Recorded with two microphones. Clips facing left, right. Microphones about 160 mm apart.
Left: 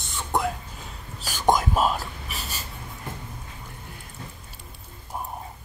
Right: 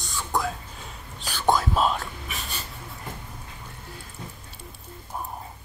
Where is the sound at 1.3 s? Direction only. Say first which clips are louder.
Left 1 dB; 15° left (ahead or behind).